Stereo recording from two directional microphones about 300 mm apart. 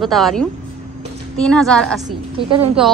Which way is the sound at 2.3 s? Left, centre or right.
Centre.